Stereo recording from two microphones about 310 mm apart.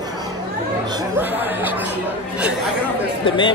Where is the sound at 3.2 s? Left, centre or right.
Centre.